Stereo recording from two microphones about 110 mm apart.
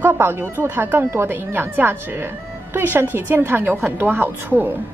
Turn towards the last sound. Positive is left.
turn(degrees=-20)  # may be behind; listen again after turning